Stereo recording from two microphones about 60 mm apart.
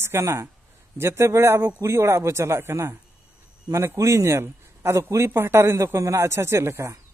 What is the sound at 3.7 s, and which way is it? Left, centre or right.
A man's voice, right.